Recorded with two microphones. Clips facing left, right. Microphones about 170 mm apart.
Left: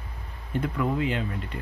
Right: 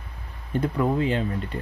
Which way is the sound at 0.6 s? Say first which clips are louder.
Right 4 dB; 35° right (ahead or behind).